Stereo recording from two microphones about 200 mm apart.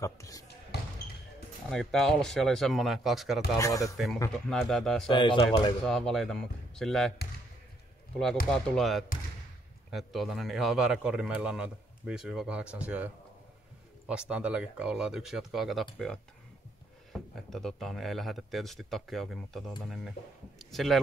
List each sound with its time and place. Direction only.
0.0 s speech: 15° left (ahead or behind)
1.7 s speech: centre (ahead or behind)
3.5 s speech: 15° left (ahead or behind)
3.9 s speech: centre (ahead or behind)
5.1 s speech: 25° left (ahead or behind)
5.9 s speech: 5° left (ahead or behind)
8.5 s speech: centre (ahead or behind)
17.1 s speech: centre (ahead or behind)